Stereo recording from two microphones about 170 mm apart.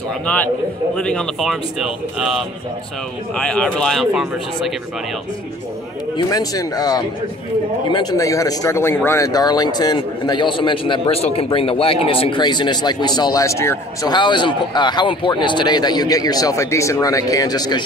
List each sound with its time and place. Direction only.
0.9 s speech: 5° left (ahead or behind)
6.1 s speech: 20° left (ahead or behind)